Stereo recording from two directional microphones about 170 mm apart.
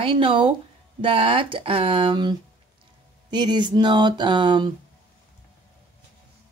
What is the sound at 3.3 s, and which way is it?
Speech, 25° right (ahead or behind).